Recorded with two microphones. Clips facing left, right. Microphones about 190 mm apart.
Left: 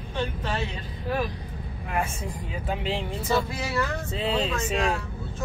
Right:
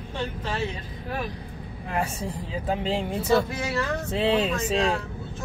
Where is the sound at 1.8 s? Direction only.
30° right (ahead or behind).